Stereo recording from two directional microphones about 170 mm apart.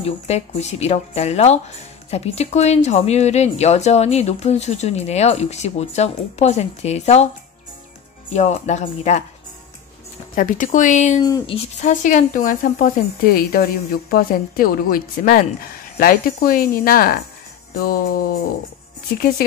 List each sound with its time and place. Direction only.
0.0 s speech: 40° left (ahead or behind)
8.3 s speech: 45° left (ahead or behind)
10.3 s speech: 50° left (ahead or behind)
11.1 s speech: 25° left (ahead or behind)
11.5 s a woman's voice: 45° left (ahead or behind)